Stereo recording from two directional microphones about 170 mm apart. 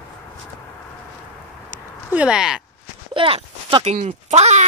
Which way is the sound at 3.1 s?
30° right (ahead or behind).